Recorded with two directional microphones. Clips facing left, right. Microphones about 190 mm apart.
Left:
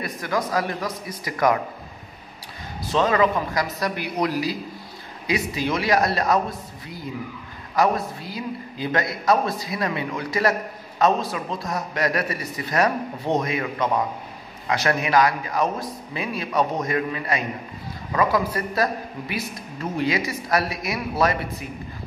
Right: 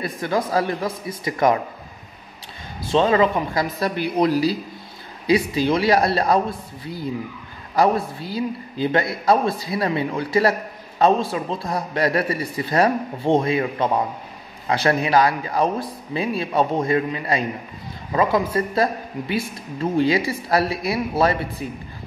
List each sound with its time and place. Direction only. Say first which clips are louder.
0.0 s speech: right 3 dB; 30° right (ahead or behind)
2.8 s a man's voice: right 3 dB; 25° right (ahead or behind)
7.7 s a man's voice: right 3 dB; 30° right (ahead or behind)